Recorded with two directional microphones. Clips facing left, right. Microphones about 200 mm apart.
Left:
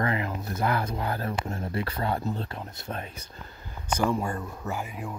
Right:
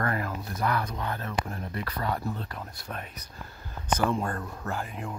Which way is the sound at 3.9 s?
10° left (ahead or behind).